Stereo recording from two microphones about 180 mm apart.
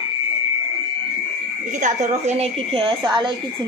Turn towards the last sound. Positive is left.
turn(degrees=-25)  # may be behind; listen again after turning